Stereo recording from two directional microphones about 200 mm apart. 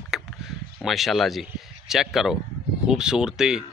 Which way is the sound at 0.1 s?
Centre (ahead or behind).